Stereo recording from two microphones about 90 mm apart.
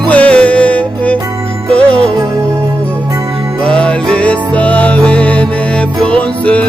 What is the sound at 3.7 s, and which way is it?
Music, 10° left (ahead or behind).